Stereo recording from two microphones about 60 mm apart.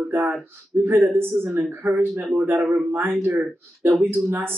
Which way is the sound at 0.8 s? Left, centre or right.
Right.